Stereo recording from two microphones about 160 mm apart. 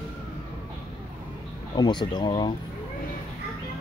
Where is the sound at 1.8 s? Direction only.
25° left (ahead or behind).